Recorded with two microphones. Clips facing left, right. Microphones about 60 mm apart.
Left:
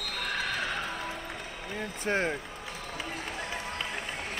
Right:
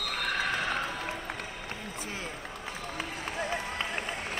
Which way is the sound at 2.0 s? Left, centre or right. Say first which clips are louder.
Left 13 dB; left.